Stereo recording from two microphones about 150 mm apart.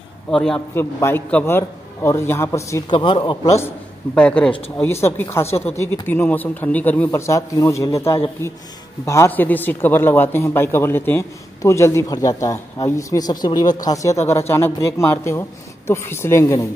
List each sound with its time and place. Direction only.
0.3 s a man's voice: 5° left (ahead or behind)
0.7 s a man's voice: 15° left (ahead or behind)
2.9 s speech: 30° left (ahead or behind)
3.5 s a man's voice: 10° left (ahead or behind)